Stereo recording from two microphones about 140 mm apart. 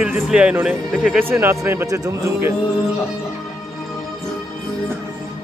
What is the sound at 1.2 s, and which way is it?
Speech, 15° right (ahead or behind).